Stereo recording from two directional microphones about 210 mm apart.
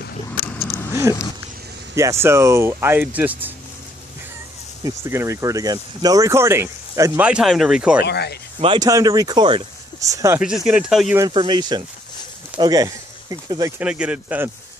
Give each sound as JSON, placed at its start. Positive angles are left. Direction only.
{"t": 0.5, "sound": "vehicle", "side_deg": 10}
{"t": 2.0, "sound": "speech", "side_deg": -15}
{"t": 4.8, "sound": "speech", "side_deg": -15}
{"t": 8.0, "sound": "speech", "side_deg": 50}
{"t": 8.5, "sound": "speech", "side_deg": -20}
{"t": 10.4, "sound": "speech", "side_deg": -5}
{"t": 11.1, "sound": "speech", "side_deg": -20}